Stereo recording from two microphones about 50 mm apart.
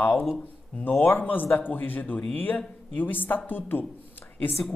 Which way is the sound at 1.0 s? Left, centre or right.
Left.